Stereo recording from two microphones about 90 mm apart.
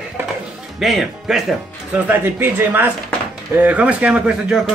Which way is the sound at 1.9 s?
20° right (ahead or behind).